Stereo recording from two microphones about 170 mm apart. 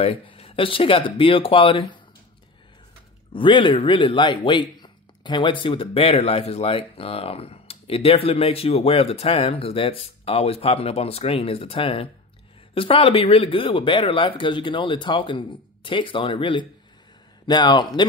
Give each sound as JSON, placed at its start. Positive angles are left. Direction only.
{"t": 0.0, "sound": "speech", "side_deg": 30}
{"t": 3.3, "sound": "speech", "side_deg": 30}